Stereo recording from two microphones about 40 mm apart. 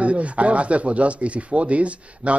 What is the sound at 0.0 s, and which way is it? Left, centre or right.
Speech, right.